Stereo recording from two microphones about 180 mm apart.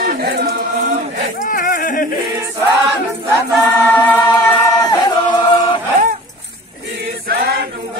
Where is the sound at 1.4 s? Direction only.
50° left (ahead or behind).